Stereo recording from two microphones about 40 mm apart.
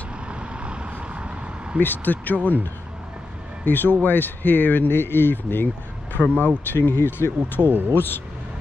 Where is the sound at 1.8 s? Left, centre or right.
Left.